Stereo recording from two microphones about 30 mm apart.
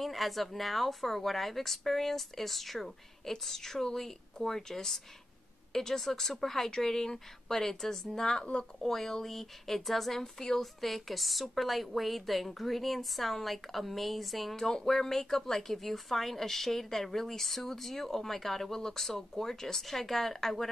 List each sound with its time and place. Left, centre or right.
0.0 s a woman's voice: centre
7.8 s a woman's voice: centre